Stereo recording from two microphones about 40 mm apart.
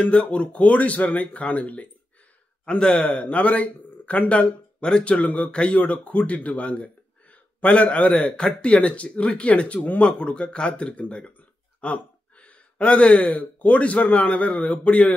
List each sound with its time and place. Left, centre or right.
0.0 s a man's voice: left
2.6 s speech: left
3.1 s a man's voice: left
8.3 s a man's voice: left
11.8 s a sound: left
13.3 s a man's voice: left